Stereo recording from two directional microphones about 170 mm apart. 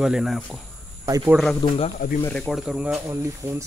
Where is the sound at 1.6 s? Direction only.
25° left (ahead or behind).